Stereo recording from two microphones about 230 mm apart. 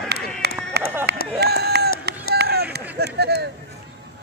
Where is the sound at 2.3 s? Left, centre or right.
Right.